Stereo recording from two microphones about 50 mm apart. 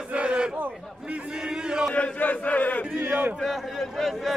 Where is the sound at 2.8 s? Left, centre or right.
Right.